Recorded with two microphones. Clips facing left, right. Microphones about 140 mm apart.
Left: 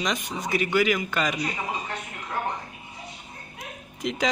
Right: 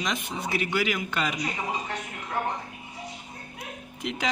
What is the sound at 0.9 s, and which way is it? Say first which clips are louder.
Speech: left 3 dB; 5° right (ahead or behind).